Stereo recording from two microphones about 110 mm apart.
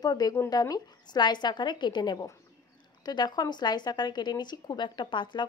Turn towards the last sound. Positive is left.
turn(degrees=45)  # may be behind; listen again after turning